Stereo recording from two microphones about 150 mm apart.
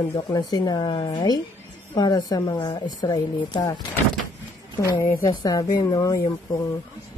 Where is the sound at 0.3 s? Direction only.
25° left (ahead or behind).